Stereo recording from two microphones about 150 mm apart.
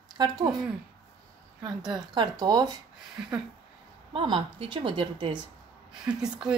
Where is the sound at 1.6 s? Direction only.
5° right (ahead or behind).